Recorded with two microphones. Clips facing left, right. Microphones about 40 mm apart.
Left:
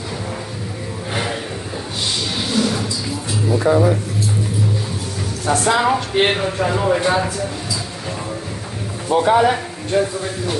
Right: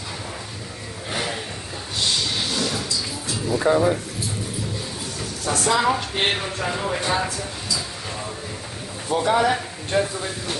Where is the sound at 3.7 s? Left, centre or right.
Centre.